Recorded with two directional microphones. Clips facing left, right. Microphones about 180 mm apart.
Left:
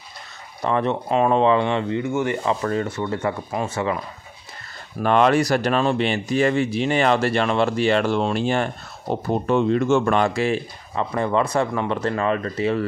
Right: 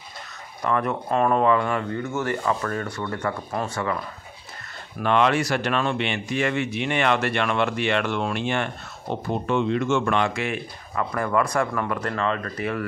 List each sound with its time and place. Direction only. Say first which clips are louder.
0.6 s speech: left 3 dB; 30° left (ahead or behind)
5.0 s speech: left 4 dB; 40° left (ahead or behind)